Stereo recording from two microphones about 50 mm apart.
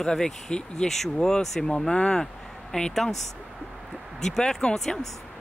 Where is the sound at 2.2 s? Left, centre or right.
Centre.